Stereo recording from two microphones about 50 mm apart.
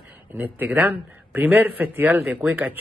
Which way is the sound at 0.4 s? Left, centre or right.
Right.